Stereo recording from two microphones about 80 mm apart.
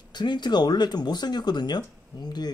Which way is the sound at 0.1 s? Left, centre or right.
Left.